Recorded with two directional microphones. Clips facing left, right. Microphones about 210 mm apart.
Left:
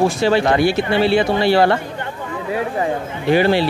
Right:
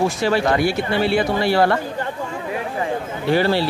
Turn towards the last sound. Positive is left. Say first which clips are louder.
# left 3 dB
turn(degrees=15)  # may be behind; listen again after turning